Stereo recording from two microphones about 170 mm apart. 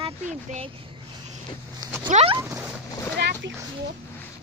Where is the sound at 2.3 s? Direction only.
15° right (ahead or behind).